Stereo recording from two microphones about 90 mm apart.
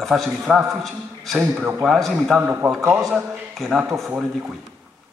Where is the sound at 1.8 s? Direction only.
5° right (ahead or behind).